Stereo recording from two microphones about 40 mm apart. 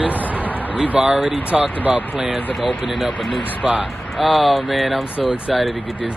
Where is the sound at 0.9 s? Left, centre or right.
Centre.